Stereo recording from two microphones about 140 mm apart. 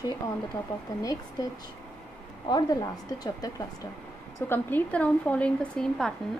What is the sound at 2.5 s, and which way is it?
A woman's voice, 30° left (ahead or behind).